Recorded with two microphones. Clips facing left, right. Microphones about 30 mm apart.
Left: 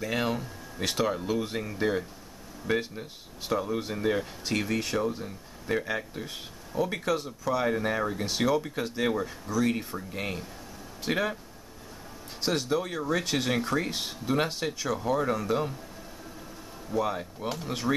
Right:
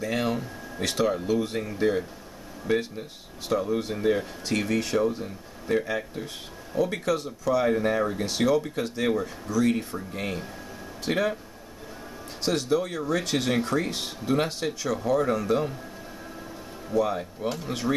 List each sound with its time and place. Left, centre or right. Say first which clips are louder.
0.0 s speech: right 2 dB; centre
12.4 s speech: right 3 dB; centre
16.9 s speech: right 4 dB; centre